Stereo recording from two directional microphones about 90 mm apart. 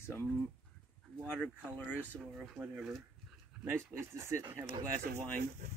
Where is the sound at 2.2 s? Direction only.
5° right (ahead or behind).